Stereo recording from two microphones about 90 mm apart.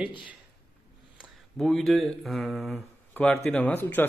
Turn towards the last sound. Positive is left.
turn(degrees=20)  # may be behind; listen again after turning